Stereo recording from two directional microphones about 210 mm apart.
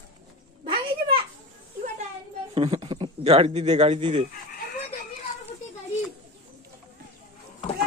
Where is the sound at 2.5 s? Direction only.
25° right (ahead or behind).